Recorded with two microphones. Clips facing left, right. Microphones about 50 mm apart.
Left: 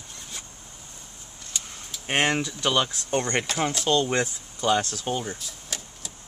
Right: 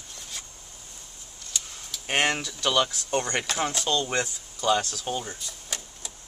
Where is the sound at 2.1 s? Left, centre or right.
Centre.